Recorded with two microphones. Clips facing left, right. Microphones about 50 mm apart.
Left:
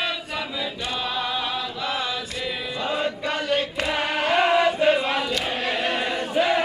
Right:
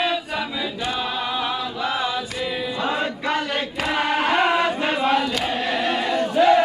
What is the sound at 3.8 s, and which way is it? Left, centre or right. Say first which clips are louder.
Chant: right 3 dB; centre.